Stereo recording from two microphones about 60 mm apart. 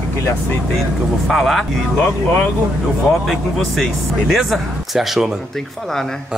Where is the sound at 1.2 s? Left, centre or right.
Centre.